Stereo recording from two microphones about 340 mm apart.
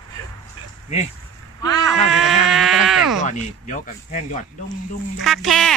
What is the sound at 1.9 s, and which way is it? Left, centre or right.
Speech, centre.